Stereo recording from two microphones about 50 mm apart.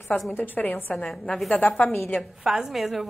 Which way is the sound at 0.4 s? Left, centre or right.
Left.